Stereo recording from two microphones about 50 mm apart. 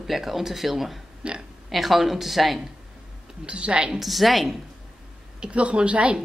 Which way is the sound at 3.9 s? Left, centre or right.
Centre.